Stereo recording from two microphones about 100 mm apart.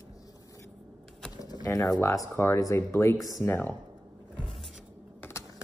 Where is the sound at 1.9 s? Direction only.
35° left (ahead or behind); by 3.7 s 20° left (ahead or behind).